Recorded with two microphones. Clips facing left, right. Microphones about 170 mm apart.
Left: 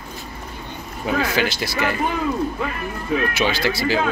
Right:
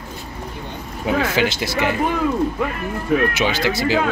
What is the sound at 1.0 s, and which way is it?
Speech, 20° right (ahead or behind).